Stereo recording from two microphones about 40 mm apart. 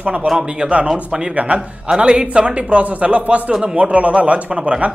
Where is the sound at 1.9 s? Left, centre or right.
Right.